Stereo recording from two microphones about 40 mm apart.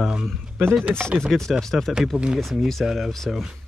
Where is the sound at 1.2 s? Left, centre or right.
Centre.